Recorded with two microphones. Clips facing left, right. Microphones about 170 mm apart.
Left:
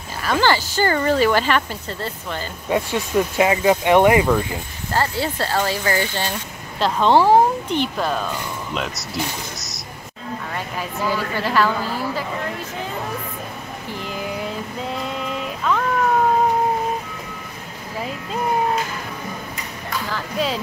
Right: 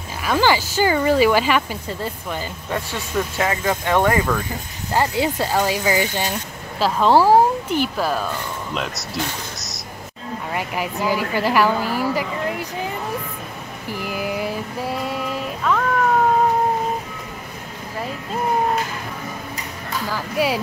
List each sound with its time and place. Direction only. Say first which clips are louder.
0.2 s speech: right 1 dB; 10° right (ahead or behind)
2.7 s speech: left 5 dB; 15° left (ahead or behind)
4.9 s speech: right 2 dB; 15° right (ahead or behind); by 9.8 s centre (ahead or behind)
10.5 s a woman's voice: right 6 dB; 10° right (ahead or behind)
13.9 s a sound: right 3 dB; 10° right (ahead or behind)
20.1 s speech: right 3 dB; 10° right (ahead or behind)